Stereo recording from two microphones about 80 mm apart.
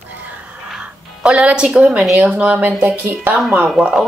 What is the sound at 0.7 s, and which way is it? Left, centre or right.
Music, centre.